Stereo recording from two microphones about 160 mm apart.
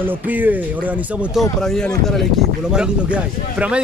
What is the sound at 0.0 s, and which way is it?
Speech, 10° right (ahead or behind).